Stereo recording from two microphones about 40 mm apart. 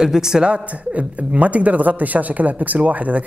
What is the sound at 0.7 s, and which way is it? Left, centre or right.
Speech, right.